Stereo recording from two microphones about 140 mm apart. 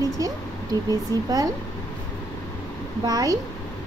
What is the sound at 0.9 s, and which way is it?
Speech, 25° right (ahead or behind).